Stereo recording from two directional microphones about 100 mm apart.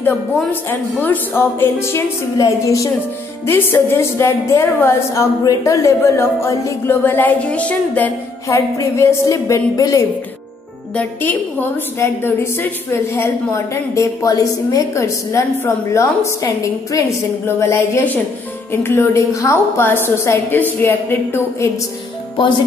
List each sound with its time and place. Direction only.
0.5 s a woman's voice: 20° left (ahead or behind)
8.5 s a woman's voice: 30° left (ahead or behind)
11.0 s a woman's voice: 20° left (ahead or behind)
17.6 s a woman's voice: 30° left (ahead or behind)